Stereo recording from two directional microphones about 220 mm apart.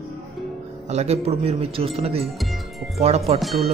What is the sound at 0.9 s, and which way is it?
Speech, 30° right (ahead or behind).